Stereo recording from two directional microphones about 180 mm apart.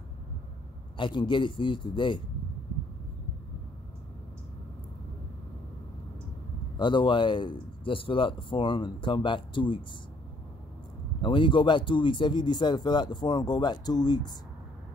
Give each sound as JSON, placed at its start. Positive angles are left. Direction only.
{"t": 0.9, "sound": "speech", "side_deg": 25}
{"t": 6.8, "sound": "speech", "side_deg": 25}
{"t": 11.2, "sound": "speech", "side_deg": 25}